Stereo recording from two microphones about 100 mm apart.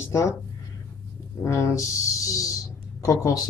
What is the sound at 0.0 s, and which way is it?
Speech, 30° left (ahead or behind).